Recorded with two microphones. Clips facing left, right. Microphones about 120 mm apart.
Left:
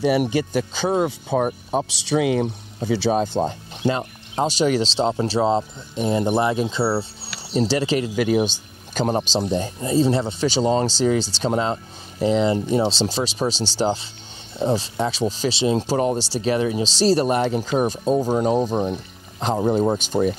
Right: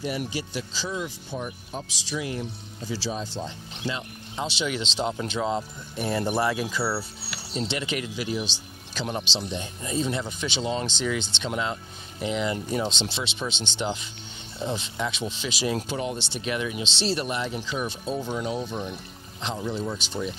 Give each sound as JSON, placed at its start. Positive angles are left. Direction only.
{"t": 0.0, "sound": "speech", "side_deg": 70}
{"t": 5.9, "sound": "speech", "side_deg": 20}
{"t": 8.2, "sound": "speech", "side_deg": 50}